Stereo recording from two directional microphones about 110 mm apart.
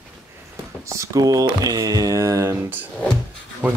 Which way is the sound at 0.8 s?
30° right (ahead or behind).